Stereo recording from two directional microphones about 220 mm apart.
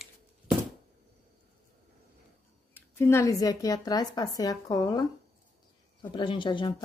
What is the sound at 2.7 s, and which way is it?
Speech, 10° left (ahead or behind).